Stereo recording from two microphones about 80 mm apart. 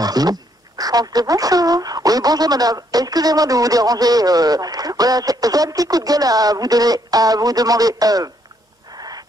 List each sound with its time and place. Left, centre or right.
0.0 s speech: right